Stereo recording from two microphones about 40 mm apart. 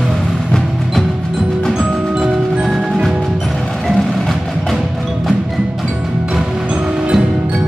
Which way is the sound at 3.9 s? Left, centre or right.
Centre.